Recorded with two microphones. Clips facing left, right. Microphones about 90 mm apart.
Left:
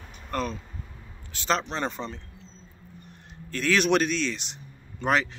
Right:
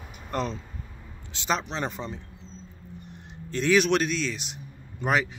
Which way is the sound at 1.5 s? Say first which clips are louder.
Left 1 dB; 5° right (ahead or behind).